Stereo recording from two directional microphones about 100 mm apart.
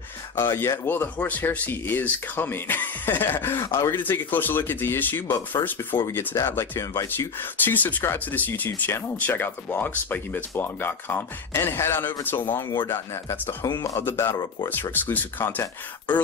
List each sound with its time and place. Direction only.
0.4 s speech: 25° left (ahead or behind)
13.7 s speech: 50° left (ahead or behind)
13.9 s speech: 25° left (ahead or behind)